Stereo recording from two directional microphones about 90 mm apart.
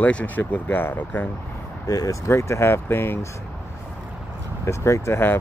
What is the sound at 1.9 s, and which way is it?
Speech, 40° left (ahead or behind).